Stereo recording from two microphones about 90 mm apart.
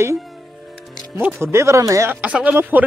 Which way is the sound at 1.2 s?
20° right (ahead or behind).